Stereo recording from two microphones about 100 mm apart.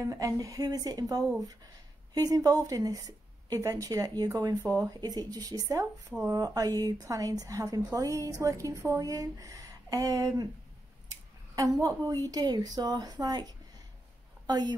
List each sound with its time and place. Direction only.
0.0 s a woman's voice: 35° right (ahead or behind)
11.1 s scissors: 35° right (ahead or behind)
11.8 s a woman's voice: 35° right (ahead or behind)
14.4 s a sound: 45° right (ahead or behind)